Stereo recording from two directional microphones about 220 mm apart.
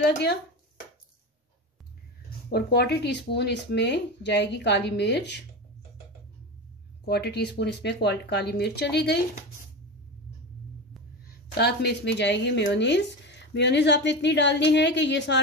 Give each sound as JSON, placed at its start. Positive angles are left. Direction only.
{"t": 2.5, "sound": "speech", "side_deg": 45}
{"t": 7.1, "sound": "speech", "side_deg": 45}
{"t": 11.5, "sound": "speech", "side_deg": 50}